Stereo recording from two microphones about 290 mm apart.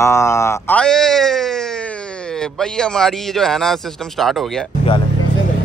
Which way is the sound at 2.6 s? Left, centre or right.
Centre.